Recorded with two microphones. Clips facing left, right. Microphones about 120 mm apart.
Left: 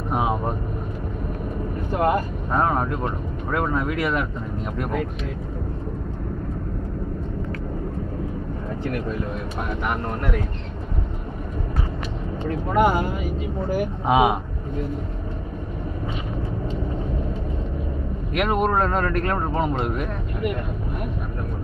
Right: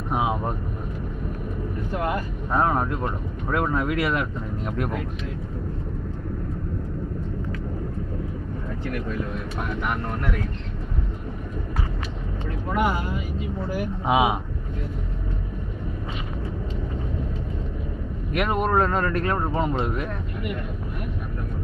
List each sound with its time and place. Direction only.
0.1 s vehicle: 5° right (ahead or behind)
2.0 s speech: 45° left (ahead or behind)
2.5 s speech: centre (ahead or behind)
10.0 s speech: 20° left (ahead or behind)
12.4 s speech: 45° left (ahead or behind)
14.0 s speech: centre (ahead or behind)
18.4 s speech: 5° left (ahead or behind)